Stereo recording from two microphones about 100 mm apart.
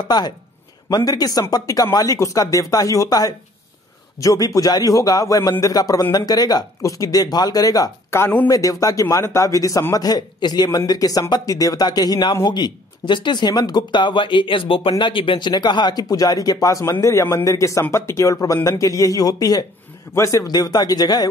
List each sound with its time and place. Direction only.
0.1 s a man's voice: 45° left (ahead or behind)
8.1 s speech: 20° left (ahead or behind)
8.5 s a man's voice: 35° left (ahead or behind)